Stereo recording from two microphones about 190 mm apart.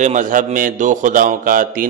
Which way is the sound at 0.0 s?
40° right (ahead or behind).